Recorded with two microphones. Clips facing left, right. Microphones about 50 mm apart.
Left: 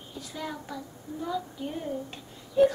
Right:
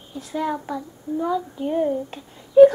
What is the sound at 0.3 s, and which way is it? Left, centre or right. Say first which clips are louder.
A child's voice: right 12 dB; centre.